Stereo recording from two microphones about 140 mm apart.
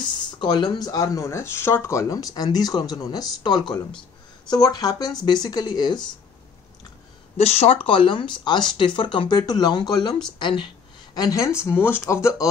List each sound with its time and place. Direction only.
0.0 s speech: 30° left (ahead or behind)
7.3 s speech: 50° left (ahead or behind)
11.1 s speech: 25° left (ahead or behind)